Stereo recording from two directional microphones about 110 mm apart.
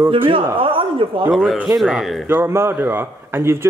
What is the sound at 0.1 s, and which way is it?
Speech, 55° right (ahead or behind).